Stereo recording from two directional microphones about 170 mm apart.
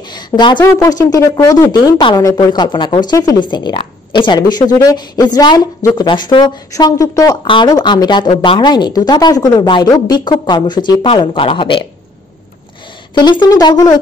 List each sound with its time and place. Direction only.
0.1 s a sound: 25° left (ahead or behind)
0.6 s speech: 20° left (ahead or behind)
13.1 s speech: 25° left (ahead or behind)